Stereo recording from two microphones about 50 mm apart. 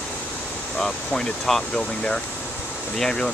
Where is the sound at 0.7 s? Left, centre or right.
Centre.